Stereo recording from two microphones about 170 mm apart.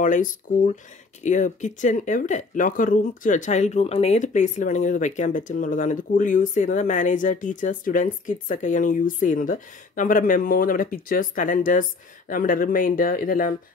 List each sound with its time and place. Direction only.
0.0 s speech: 50° left (ahead or behind)